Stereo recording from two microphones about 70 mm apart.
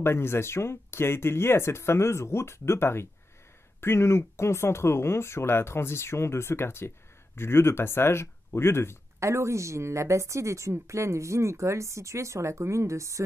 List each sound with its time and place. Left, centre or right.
0.0 s speech: left
9.2 s speech: right